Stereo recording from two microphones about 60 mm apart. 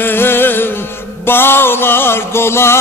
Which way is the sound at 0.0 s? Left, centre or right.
Left.